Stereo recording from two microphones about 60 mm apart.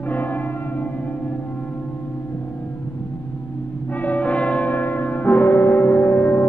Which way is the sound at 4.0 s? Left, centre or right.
Left.